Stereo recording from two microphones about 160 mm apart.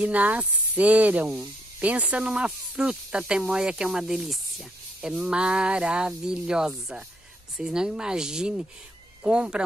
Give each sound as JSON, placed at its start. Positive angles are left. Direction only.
{"t": 0.0, "sound": "speech", "side_deg": -10}